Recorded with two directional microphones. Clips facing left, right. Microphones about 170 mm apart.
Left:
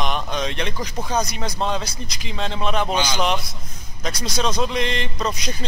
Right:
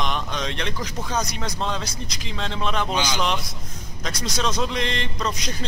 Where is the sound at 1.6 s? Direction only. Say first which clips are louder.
Left 5 dB; 5° left (ahead or behind).